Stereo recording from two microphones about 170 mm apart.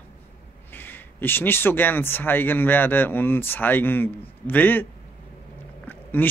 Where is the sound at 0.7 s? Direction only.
10° left (ahead or behind).